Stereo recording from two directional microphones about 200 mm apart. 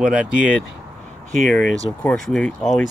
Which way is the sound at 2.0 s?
5° left (ahead or behind).